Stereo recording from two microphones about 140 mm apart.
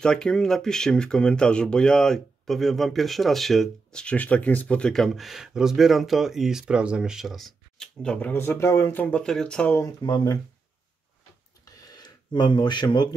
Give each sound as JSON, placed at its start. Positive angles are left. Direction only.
{"t": 0.0, "sound": "speech", "side_deg": 5}
{"t": 10.0, "sound": "speech", "side_deg": 30}
{"t": 11.6, "sound": "a sound", "side_deg": 30}